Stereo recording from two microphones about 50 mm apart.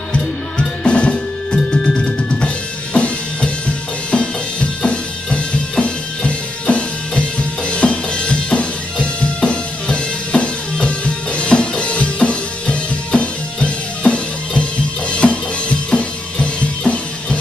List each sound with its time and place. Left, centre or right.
0.1 s music: left